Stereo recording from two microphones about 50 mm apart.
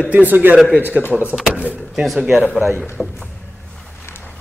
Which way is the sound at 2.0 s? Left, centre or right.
Centre.